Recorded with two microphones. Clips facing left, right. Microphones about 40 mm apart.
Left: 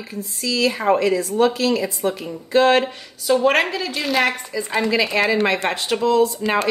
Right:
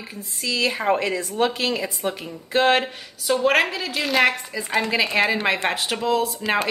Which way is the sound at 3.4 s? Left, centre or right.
Centre.